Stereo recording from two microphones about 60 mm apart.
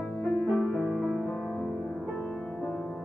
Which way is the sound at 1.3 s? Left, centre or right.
Centre.